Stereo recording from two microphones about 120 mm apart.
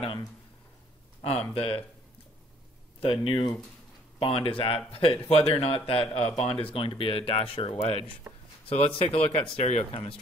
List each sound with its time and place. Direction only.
1.5 s speech: 50° left (ahead or behind)
3.0 s speech: 50° left (ahead or behind)
8.3 s a sound: 20° right (ahead or behind)
8.6 s speech: 55° left (ahead or behind)